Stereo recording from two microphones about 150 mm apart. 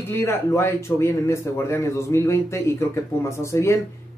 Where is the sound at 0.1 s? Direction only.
20° left (ahead or behind).